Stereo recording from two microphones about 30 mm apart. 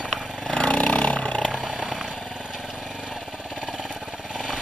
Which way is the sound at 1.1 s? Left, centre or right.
Left.